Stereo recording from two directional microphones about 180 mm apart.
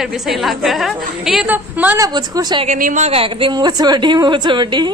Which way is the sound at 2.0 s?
20° right (ahead or behind).